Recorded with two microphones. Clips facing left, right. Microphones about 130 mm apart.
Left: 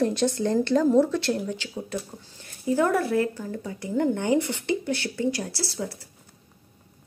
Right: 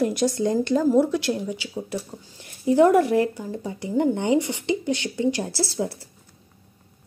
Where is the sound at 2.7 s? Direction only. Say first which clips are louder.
Right 6 dB; 20° right (ahead or behind).